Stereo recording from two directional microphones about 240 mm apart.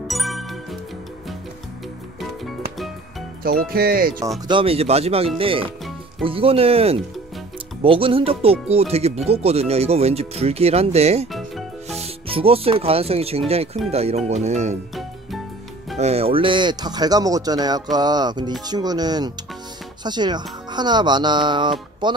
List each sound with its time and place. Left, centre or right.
0.1 s music: centre
3.4 s speech: right
4.5 s speech: right
11.3 s music: centre
12.0 s speech: right
16.0 s speech: right